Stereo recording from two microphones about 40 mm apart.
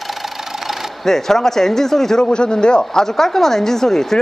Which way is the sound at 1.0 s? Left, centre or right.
Centre.